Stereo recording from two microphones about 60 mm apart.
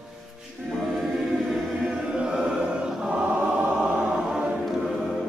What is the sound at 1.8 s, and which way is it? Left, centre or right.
Choir, centre.